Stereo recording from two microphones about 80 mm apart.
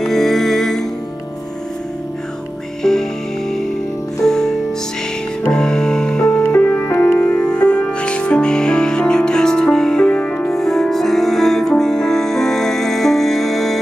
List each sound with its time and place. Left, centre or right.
0.0 s music: centre
2.8 s music: centre
6.4 s music: left
7.2 s music: centre